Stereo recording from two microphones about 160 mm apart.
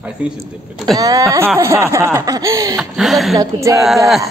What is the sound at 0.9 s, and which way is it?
A woman's voice, 20° right (ahead or behind).